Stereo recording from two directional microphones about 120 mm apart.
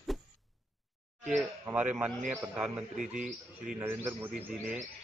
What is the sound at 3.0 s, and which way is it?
Speech, 90° right.